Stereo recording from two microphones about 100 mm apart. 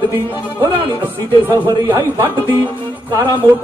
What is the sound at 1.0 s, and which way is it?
Speech, 20° right (ahead or behind).